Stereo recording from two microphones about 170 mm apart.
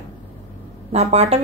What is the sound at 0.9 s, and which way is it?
Speech, 40° right (ahead or behind).